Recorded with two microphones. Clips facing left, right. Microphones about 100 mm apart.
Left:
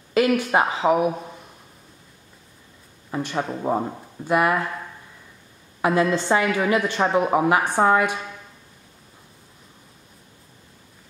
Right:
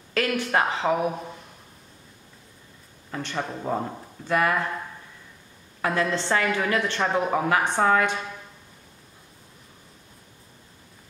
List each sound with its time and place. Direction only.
0.3 s a woman's voice: 10° left (ahead or behind)
3.1 s a woman's voice: 10° left (ahead or behind)
5.8 s a woman's voice: 15° left (ahead or behind)